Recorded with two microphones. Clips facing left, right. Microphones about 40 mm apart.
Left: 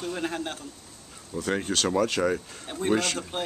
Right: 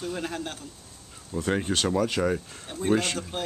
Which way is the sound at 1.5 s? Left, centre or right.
Centre.